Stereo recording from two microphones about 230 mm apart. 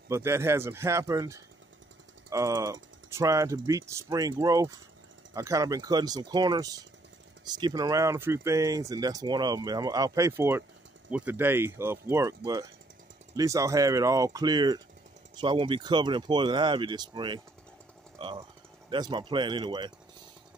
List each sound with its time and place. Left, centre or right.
0.1 s speech: centre
13.4 s speech: centre
18.9 s speech: centre